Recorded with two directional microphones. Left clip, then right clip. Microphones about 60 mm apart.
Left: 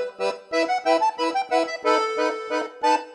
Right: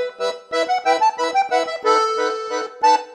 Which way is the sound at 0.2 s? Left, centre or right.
Left.